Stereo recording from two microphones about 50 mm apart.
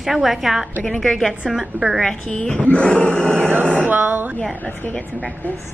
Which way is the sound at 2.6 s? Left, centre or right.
Left.